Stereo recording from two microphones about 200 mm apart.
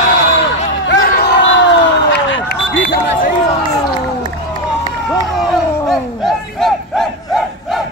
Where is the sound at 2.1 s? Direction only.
55° left (ahead or behind).